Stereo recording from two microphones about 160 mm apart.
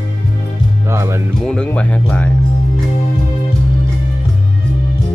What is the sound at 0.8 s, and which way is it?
Music, 15° right (ahead or behind).